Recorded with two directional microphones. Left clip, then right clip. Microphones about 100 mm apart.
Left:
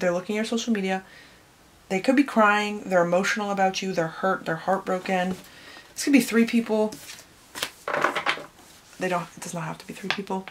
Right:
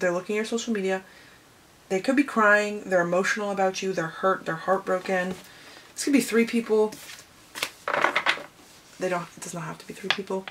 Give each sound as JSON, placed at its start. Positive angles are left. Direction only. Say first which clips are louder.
{"t": 0.0, "sound": "speech", "louder": "even", "side_deg": 30}
{"t": 7.8, "sound": "a sound", "louder": "right 1 dB", "side_deg": -15}
{"t": 9.0, "sound": "speech", "louder": "left 1 dB", "side_deg": 30}